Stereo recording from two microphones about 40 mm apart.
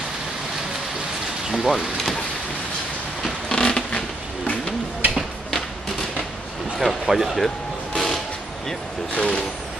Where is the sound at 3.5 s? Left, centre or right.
Left.